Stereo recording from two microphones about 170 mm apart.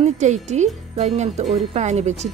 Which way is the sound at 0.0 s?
45° right (ahead or behind).